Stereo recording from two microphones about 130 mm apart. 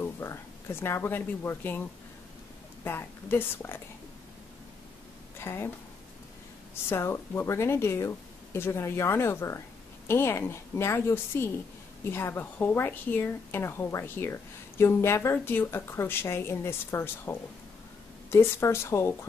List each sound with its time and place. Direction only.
0.0 s speech: 20° left (ahead or behind)
2.8 s a woman's voice: 15° left (ahead or behind)
5.4 s a woman's voice: 20° left (ahead or behind)
6.7 s a woman's voice: 20° left (ahead or behind)